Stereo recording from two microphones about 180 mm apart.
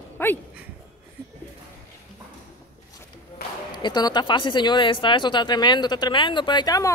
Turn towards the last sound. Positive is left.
turn(degrees=20)  # may be behind; listen again after turning